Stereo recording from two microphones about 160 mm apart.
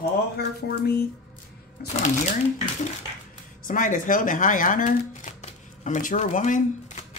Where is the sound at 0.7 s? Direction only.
80° left.